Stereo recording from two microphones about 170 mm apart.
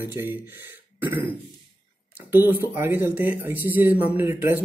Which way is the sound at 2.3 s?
10° right (ahead or behind).